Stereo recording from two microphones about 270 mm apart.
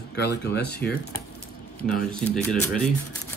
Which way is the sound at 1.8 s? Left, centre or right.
Centre.